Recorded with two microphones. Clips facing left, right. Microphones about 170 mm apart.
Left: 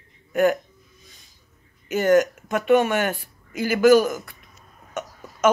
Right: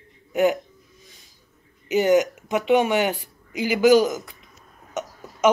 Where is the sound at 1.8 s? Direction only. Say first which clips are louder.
Even; 15° right (ahead or behind).